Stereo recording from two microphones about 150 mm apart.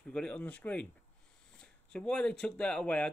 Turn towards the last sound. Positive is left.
turn(degrees=5)  # may be behind; listen again after turning